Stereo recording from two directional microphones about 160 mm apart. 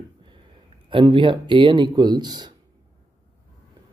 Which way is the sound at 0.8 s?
30° right (ahead or behind).